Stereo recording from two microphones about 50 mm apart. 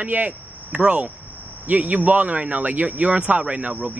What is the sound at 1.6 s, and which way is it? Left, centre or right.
A man's voice, right.